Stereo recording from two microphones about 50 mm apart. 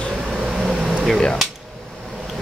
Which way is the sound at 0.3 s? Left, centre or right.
Centre.